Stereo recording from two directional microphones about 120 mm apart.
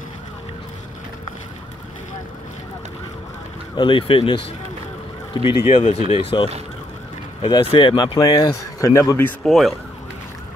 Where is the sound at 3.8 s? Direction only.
45° left (ahead or behind).